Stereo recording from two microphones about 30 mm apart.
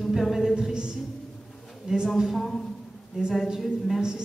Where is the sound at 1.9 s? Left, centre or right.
Centre.